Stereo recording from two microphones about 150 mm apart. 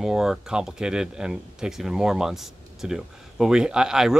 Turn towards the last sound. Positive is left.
turn(degrees=-5)  # may be behind; listen again after turning